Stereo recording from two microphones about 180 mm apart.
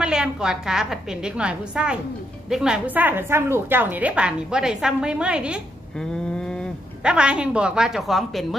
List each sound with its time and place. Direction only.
0.0 s a woman's voice: 5° right (ahead or behind)
6.3 s a woman's voice: 5° left (ahead or behind)